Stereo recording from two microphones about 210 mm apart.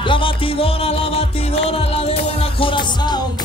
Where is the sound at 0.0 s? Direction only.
25° left (ahead or behind).